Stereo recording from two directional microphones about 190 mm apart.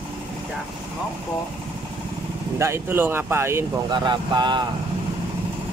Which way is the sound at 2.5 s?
15° right (ahead or behind).